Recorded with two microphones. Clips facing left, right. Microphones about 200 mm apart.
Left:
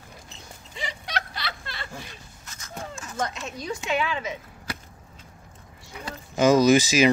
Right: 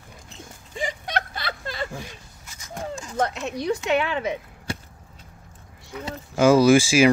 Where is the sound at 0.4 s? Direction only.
50° right (ahead or behind).